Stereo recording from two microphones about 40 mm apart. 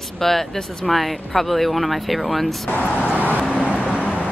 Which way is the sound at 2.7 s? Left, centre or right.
Left.